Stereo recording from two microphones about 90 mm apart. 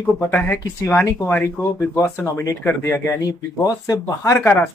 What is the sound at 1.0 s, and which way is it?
Speech, 30° left (ahead or behind).